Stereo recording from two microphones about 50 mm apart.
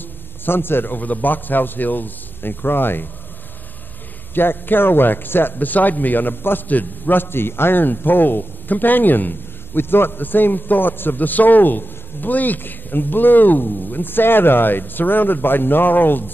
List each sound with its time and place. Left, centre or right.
0.5 s a man's voice: left
4.3 s a man's voice: left